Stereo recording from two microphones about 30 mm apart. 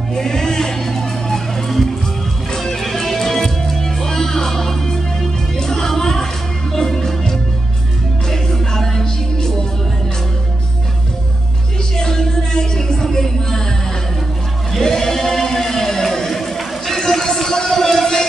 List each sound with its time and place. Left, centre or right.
0.1 s music: centre
1.7 s music: centre
12.0 s music: left
14.7 s choir: centre